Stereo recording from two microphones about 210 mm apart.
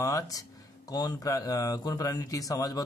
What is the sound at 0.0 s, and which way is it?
Speech, 15° left (ahead or behind).